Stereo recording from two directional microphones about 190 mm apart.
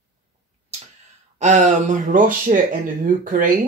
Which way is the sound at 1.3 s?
40° right (ahead or behind).